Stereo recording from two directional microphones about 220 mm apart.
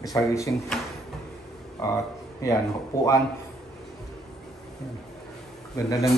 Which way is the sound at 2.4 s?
15° left (ahead or behind).